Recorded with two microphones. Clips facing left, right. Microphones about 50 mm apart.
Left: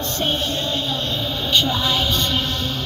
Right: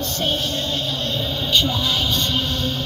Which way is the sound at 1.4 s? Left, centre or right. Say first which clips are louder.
Left 1 dB; centre.